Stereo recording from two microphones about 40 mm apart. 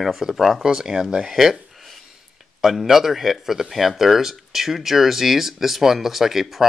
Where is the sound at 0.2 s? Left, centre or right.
Centre.